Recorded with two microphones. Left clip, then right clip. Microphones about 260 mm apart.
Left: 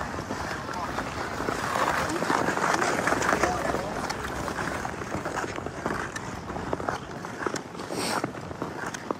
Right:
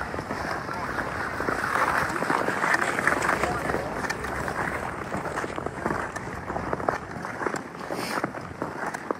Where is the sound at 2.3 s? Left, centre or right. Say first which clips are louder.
Right 1 dB; left.